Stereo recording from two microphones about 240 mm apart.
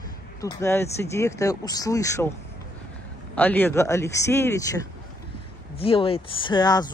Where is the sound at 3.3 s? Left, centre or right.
Centre.